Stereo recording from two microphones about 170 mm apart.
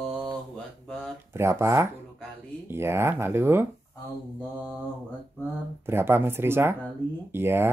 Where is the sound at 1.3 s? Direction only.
15° right (ahead or behind).